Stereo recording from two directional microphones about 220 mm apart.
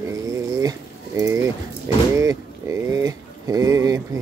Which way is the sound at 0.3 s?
15° right (ahead or behind).